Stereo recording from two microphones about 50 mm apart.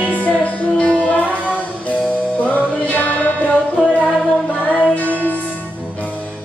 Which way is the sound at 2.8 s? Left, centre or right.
Left.